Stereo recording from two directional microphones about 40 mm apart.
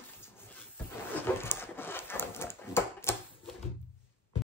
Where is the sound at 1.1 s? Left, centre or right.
Left.